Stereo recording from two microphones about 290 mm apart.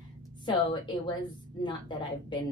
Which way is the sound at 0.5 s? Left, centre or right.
Centre.